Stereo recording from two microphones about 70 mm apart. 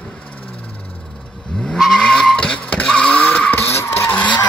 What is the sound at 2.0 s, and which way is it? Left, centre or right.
Vehicle, centre.